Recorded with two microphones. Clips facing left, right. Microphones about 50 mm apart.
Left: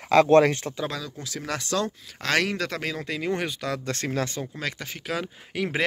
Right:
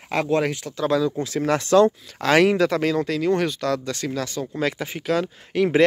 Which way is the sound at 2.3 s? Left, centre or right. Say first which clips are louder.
Right 8 dB; centre.